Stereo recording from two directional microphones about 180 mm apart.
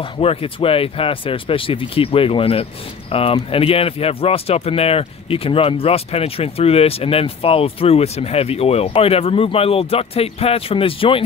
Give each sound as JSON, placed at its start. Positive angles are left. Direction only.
{"t": 0.0, "sound": "speech", "side_deg": 30}